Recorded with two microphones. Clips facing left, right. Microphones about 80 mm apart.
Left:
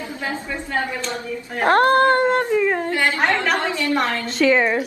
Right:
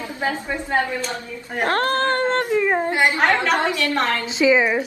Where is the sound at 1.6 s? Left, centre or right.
Left.